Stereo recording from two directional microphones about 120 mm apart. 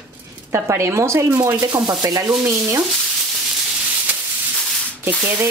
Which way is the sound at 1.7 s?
30° right (ahead or behind).